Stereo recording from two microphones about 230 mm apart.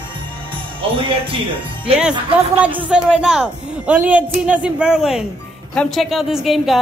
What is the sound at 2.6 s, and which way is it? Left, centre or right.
Speech, centre.